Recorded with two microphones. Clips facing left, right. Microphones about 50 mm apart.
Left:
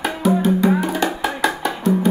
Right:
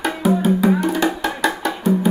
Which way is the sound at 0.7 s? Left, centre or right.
Centre.